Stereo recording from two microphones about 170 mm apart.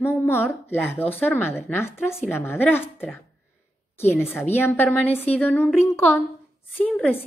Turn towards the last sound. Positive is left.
turn(degrees=5)  # may be behind; listen again after turning